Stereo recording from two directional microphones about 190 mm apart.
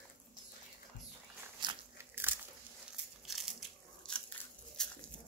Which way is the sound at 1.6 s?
25° right (ahead or behind).